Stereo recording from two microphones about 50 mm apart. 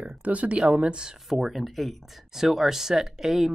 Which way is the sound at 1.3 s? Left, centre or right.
Centre.